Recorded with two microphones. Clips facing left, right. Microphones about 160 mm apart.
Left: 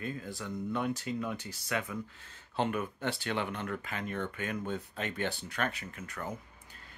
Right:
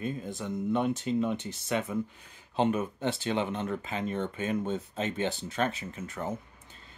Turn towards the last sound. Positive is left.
turn(degrees=-25)  # may be behind; listen again after turning